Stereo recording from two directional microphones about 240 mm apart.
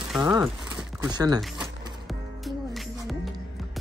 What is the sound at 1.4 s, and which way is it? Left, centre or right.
Speech, centre.